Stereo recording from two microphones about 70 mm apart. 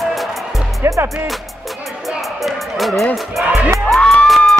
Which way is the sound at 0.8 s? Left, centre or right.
Right.